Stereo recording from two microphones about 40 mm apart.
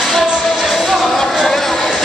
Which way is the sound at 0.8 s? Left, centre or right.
Centre.